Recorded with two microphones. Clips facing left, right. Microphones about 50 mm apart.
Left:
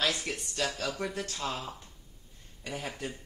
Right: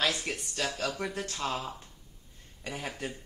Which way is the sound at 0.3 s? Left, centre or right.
Centre.